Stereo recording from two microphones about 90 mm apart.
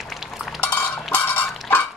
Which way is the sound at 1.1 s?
20° left (ahead or behind).